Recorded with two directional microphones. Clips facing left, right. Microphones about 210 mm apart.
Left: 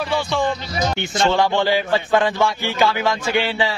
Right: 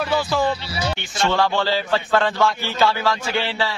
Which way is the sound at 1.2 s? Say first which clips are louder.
Left 2 dB; 15° left (ahead or behind).